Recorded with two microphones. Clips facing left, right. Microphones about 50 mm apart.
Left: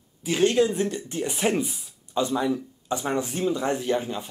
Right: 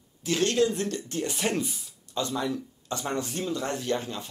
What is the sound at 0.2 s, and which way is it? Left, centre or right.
Speech, centre.